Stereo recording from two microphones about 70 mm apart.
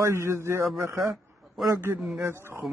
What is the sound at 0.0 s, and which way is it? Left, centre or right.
Speech, right.